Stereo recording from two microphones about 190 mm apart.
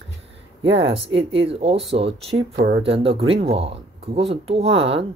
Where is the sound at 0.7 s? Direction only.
30° right (ahead or behind).